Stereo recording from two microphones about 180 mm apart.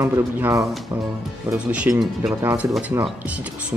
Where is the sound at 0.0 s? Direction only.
15° right (ahead or behind).